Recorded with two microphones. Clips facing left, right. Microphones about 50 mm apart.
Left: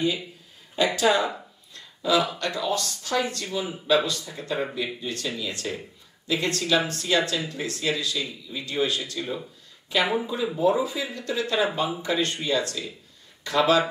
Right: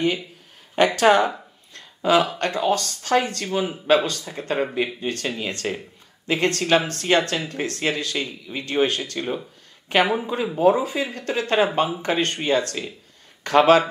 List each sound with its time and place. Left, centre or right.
0.7 s speech: right
10.0 s speech: right
10.6 s speech: right